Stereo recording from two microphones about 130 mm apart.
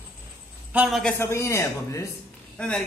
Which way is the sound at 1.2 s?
20° left (ahead or behind).